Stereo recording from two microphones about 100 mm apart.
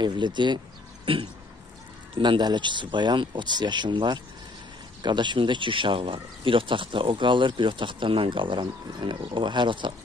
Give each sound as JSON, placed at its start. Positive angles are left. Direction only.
{"t": 0.0, "sound": "speech", "side_deg": -50}
{"t": 1.0, "sound": "a sound", "side_deg": -60}
{"t": 2.1, "sound": "speech", "side_deg": -50}